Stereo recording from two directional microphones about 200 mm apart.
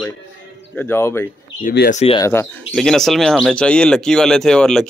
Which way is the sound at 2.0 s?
15° left (ahead or behind).